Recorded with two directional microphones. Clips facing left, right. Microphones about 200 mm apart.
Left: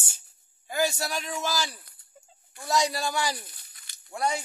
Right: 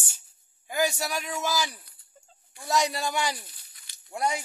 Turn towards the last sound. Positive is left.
turn(degrees=-15)  # may be behind; listen again after turning